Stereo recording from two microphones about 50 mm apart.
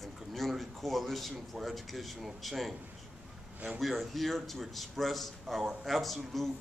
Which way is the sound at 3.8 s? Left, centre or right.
Centre.